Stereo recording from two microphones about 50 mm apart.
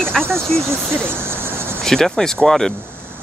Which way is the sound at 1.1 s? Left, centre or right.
Right.